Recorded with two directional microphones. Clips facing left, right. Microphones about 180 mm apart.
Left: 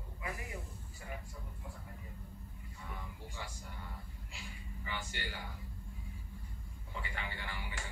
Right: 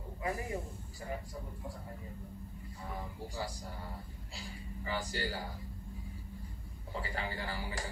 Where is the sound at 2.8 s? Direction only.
35° right (ahead or behind).